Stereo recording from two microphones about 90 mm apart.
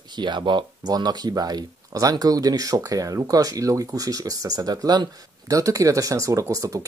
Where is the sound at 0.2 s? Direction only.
55° right (ahead or behind).